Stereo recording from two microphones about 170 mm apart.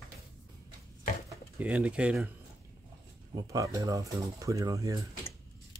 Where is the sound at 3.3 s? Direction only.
20° right (ahead or behind).